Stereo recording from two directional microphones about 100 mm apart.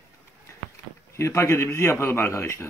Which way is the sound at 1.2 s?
25° left (ahead or behind).